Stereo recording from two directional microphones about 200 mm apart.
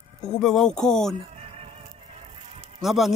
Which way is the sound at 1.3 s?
30° right (ahead or behind).